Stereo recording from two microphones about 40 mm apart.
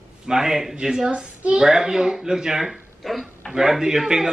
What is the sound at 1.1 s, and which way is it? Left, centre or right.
Speech, right.